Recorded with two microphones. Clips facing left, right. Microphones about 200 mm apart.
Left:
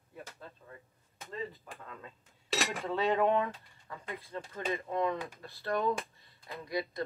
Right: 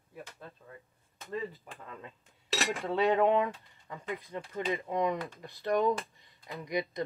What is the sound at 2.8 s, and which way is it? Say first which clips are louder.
Speech: right 3 dB; 15° right (ahead or behind).